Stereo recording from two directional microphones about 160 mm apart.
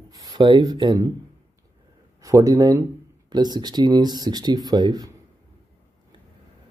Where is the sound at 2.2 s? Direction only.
20° right (ahead or behind).